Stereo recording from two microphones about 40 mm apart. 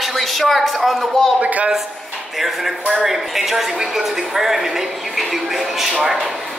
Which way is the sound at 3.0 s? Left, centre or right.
Centre.